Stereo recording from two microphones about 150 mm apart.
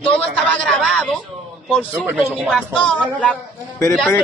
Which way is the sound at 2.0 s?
10° right (ahead or behind).